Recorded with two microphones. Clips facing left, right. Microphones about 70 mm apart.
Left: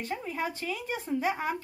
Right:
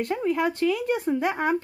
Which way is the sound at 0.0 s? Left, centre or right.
Right.